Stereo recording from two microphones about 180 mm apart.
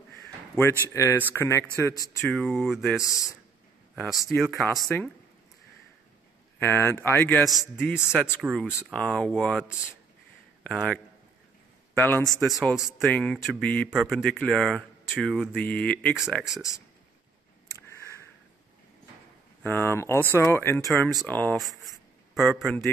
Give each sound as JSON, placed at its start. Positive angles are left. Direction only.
{"t": 0.6, "sound": "speech", "side_deg": 15}
{"t": 2.3, "sound": "speech", "side_deg": 0}
{"t": 3.0, "sound": "speech", "side_deg": 20}
{"t": 4.8, "sound": "speech", "side_deg": 5}
{"t": 6.6, "sound": "speech", "side_deg": 15}
{"t": 8.1, "sound": "speech", "side_deg": -5}
{"t": 8.9, "sound": "a man's voice", "side_deg": 5}
{"t": 12.3, "sound": "speech", "side_deg": 0}
{"t": 13.8, "sound": "speech", "side_deg": -5}
{"t": 19.6, "sound": "speech", "side_deg": 10}